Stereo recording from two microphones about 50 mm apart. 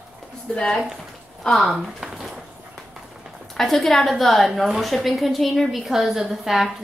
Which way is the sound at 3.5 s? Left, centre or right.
Centre.